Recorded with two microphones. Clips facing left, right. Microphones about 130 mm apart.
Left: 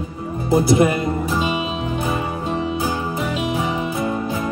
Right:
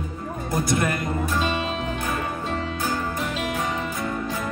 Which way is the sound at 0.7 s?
15° left (ahead or behind).